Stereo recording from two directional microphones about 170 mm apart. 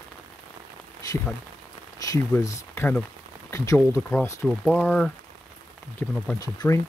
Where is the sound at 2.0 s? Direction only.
20° left (ahead or behind).